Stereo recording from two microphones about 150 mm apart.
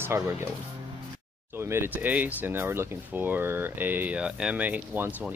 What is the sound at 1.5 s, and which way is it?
Speech, 15° right (ahead or behind).